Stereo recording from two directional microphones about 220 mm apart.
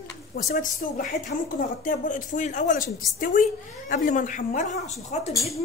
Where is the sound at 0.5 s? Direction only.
40° left (ahead or behind).